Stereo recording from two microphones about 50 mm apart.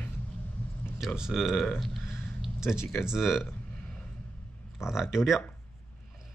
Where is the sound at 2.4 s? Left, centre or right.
Centre.